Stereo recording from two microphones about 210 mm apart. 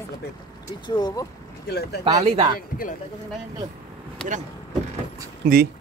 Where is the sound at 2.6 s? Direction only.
40° left (ahead or behind).